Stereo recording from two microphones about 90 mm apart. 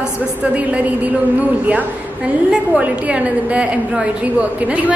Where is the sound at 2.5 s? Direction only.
15° right (ahead or behind).